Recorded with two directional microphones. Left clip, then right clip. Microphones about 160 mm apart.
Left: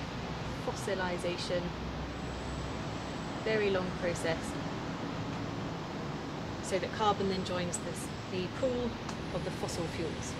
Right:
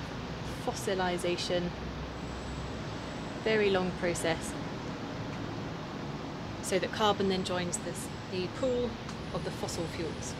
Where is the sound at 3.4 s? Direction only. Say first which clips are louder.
Right 3 dB; 75° right (ahead or behind).